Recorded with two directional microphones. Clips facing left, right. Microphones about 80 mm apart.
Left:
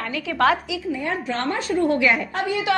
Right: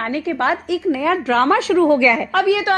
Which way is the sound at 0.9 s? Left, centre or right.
Right.